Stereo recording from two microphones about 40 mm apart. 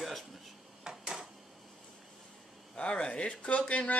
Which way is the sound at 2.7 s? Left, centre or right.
Left.